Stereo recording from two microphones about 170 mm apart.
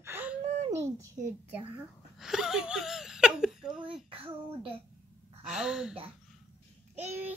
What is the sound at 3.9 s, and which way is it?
Speech, 30° right (ahead or behind).